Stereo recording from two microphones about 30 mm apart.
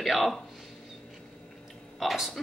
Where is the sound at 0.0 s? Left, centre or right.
Centre.